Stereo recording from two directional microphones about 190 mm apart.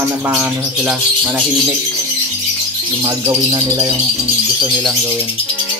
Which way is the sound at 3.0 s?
20° right (ahead or behind).